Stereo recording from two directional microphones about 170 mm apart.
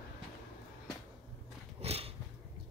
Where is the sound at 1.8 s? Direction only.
35° right (ahead or behind).